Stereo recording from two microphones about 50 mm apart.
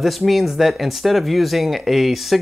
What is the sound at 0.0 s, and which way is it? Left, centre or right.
Speech, centre.